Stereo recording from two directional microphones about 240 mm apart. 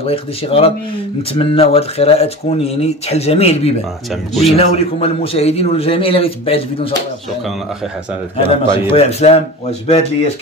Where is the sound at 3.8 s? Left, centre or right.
Centre.